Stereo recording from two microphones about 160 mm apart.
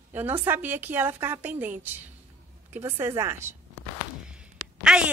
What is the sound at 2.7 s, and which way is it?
Speech, 15° right (ahead or behind).